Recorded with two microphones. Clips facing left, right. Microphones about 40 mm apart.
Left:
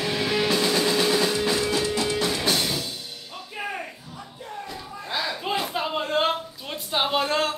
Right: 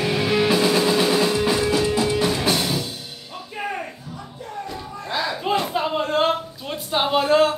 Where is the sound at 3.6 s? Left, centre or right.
Centre.